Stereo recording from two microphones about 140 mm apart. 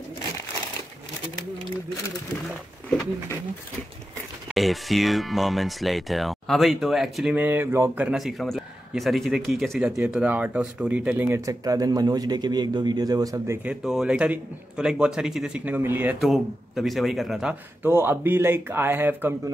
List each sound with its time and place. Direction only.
4.5 s speech: centre (ahead or behind)
11.3 s speech: 25° right (ahead or behind)
13.7 s a man's voice: 5° right (ahead or behind)
16.2 s speech: centre (ahead or behind)
17.8 s a man's voice: 15° right (ahead or behind)